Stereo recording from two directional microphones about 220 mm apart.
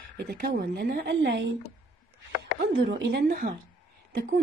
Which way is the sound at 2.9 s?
45° right (ahead or behind).